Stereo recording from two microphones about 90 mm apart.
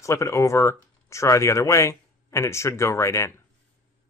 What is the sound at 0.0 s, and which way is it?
Speech, 35° left (ahead or behind).